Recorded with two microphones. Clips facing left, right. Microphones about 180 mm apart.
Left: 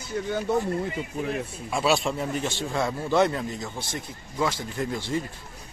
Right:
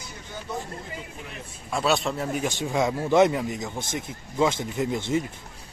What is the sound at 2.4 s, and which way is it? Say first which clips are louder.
Speech: right 2 dB; 15° right (ahead or behind).